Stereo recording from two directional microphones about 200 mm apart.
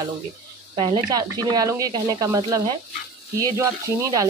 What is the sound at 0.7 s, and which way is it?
Speech, 25° right (ahead or behind).